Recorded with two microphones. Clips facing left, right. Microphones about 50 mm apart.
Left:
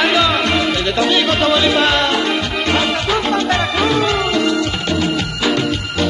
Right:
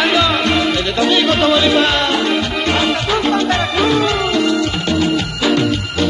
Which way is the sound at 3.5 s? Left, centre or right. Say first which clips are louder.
Right 1 dB; left.